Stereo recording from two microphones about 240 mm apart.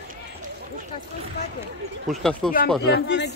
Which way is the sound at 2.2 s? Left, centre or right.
Centre.